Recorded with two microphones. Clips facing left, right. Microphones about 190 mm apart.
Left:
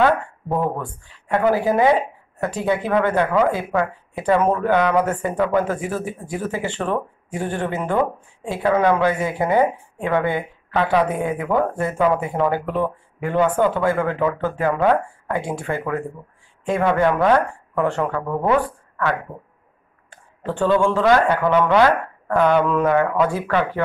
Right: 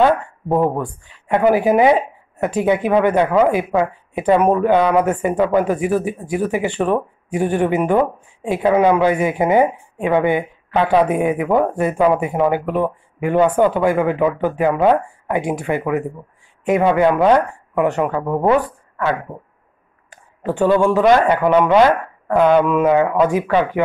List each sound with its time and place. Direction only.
0.0 s speech: 20° right (ahead or behind)
20.4 s speech: 15° right (ahead or behind)